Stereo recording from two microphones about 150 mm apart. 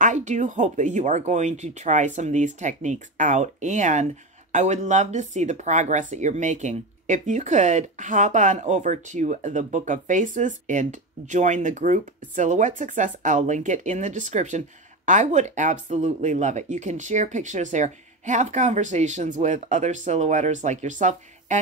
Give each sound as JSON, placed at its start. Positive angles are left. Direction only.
{"t": 0.0, "sound": "speech", "side_deg": -55}